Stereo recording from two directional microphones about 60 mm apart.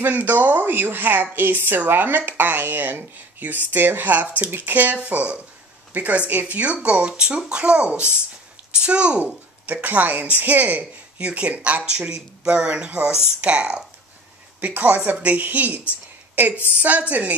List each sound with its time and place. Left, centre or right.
0.0 s a woman's voice: right